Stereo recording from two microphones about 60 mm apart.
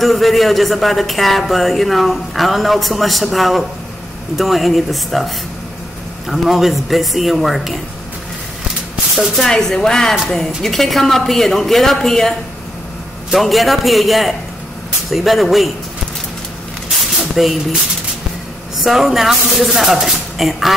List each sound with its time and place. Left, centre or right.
0.0 s a woman's voice: centre
9.1 s a woman's voice: centre
17.2 s a sound: centre
18.8 s a woman's voice: centre